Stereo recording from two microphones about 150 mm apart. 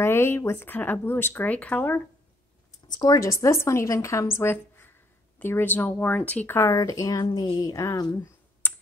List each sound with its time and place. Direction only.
0.0 s speech: 15° left (ahead or behind)
2.9 s a woman's voice: 25° left (ahead or behind)